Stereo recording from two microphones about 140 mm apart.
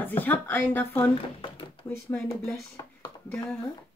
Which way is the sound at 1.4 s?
35° left (ahead or behind).